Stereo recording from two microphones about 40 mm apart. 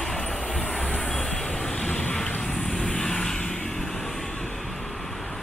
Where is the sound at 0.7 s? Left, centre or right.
Left.